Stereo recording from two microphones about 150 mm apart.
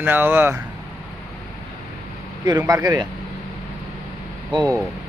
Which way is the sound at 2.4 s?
25° right (ahead or behind).